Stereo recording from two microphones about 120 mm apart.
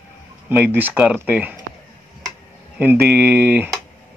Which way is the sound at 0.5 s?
15° right (ahead or behind).